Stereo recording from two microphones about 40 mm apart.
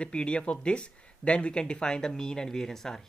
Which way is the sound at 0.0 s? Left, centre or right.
Left.